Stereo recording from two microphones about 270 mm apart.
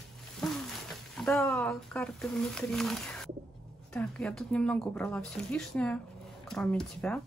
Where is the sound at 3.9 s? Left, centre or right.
Centre.